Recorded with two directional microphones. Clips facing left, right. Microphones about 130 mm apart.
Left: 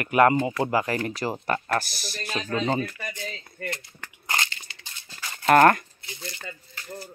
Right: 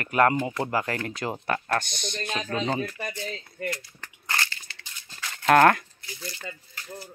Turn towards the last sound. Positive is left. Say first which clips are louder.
# even
turn(degrees=25)  # may be behind; listen again after turning